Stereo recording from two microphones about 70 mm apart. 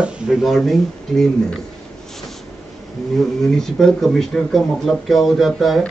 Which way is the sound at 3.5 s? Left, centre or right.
Centre.